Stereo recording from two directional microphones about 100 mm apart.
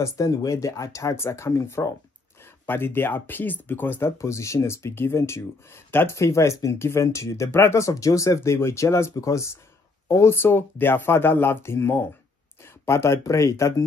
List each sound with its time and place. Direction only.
0.0 s speech: 30° left (ahead or behind)